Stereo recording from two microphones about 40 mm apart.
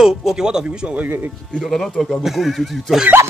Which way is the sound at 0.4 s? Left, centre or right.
Centre.